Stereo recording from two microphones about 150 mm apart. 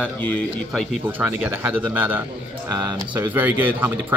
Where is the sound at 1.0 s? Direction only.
10° right (ahead or behind).